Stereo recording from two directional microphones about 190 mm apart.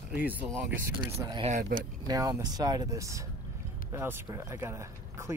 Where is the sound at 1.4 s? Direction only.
45° right (ahead or behind).